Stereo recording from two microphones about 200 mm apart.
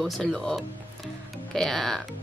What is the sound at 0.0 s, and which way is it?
Speech, centre (ahead or behind).